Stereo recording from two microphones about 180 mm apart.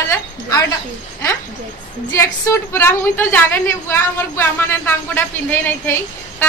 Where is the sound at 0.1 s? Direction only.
15° left (ahead or behind).